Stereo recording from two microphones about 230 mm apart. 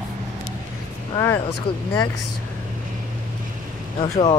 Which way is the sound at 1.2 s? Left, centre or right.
Centre.